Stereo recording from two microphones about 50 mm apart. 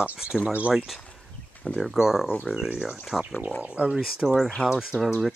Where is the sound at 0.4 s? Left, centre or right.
Right.